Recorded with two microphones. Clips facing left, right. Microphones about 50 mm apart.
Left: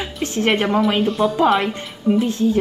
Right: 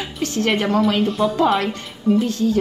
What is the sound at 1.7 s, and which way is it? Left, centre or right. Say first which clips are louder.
Speech: even; left.